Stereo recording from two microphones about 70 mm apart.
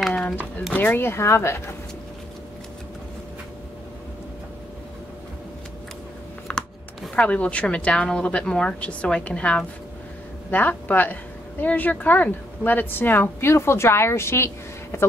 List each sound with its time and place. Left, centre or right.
0.7 s speech: left
6.5 s computer keyboard: centre
7.2 s speech: centre
10.5 s speech: left